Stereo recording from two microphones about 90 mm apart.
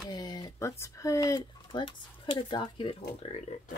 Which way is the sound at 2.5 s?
55° left (ahead or behind).